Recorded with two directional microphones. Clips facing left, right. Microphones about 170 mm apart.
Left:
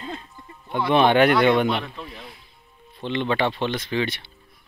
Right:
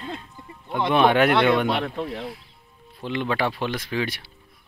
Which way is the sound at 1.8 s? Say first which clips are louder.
Right 8 dB; 55° right (ahead or behind).